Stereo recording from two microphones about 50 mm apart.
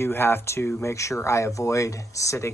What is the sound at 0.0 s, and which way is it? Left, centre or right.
Speech, left.